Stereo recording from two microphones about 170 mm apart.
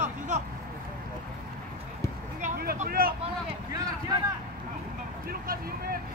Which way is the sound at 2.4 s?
60° right (ahead or behind).